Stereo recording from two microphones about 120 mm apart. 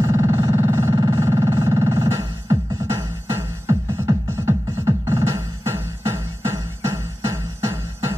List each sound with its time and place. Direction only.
0.0 s synthesizer: 25° right (ahead or behind)